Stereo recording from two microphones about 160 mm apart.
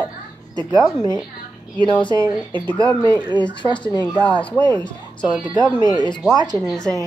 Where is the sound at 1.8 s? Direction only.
30° left (ahead or behind).